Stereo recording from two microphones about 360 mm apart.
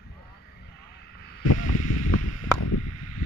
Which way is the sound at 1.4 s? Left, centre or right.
Left.